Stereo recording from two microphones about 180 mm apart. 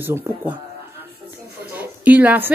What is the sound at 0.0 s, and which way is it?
Speech, 15° right (ahead or behind).